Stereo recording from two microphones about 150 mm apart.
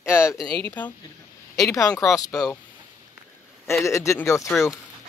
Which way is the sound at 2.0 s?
20° left (ahead or behind).